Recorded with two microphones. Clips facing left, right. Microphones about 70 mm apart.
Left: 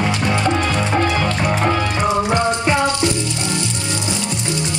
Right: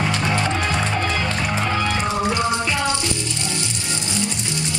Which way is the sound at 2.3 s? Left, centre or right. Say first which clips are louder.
Left 4 dB; left.